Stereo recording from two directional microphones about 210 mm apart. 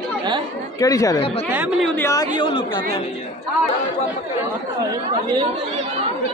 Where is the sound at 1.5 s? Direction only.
5° right (ahead or behind).